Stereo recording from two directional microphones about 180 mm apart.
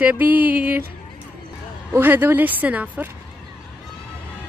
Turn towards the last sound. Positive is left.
turn(degrees=-10)  # may be behind; listen again after turning